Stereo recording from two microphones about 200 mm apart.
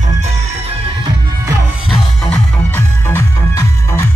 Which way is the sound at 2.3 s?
10° left (ahead or behind).